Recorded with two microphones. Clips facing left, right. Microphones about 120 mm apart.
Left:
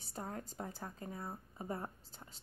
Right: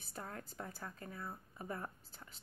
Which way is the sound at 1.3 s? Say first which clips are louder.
Left 2 dB; 25° left (ahead or behind).